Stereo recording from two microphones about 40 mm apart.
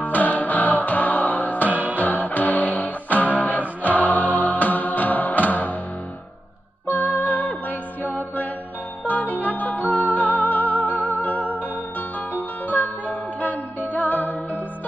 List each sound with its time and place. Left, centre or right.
0.0 s music: left
1.7 s music: right
2.0 s music: left
6.9 s music: left